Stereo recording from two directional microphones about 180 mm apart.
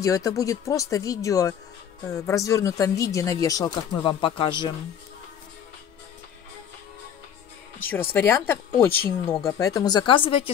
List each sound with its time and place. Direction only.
0.0 s speech: 20° left (ahead or behind)
7.8 s speech: 10° left (ahead or behind); by 10.5 s 30° left (ahead or behind)